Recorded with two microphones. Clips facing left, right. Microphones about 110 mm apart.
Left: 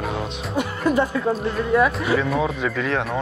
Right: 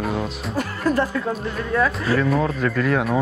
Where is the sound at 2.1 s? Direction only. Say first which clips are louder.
Right 1 dB; centre (ahead or behind).